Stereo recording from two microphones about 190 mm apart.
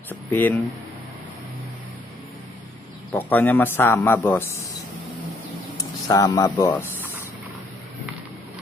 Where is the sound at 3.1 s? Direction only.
10° left (ahead or behind).